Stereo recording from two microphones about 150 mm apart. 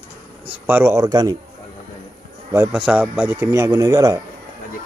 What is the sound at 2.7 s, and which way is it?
Speech, 5° right (ahead or behind).